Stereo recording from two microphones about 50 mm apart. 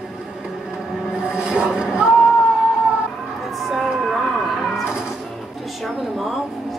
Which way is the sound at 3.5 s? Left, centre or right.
Centre.